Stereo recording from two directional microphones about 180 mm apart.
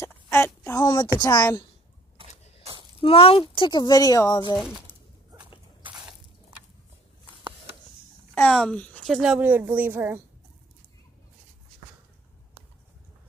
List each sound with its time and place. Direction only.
0.0 s a sound: 15° left (ahead or behind)
1.2 s speech: 20° left (ahead or behind)
3.0 s speech: 30° left (ahead or behind)
4.6 s speech: 5° right (ahead or behind)
5.8 s a sound: 25° right (ahead or behind)
8.4 s a woman's voice: 5° left (ahead or behind)